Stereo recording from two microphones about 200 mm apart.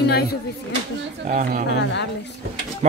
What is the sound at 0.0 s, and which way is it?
Speech, 50° left (ahead or behind).